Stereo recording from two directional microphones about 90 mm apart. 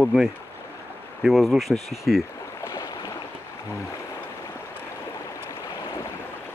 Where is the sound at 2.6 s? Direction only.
30° left (ahead or behind).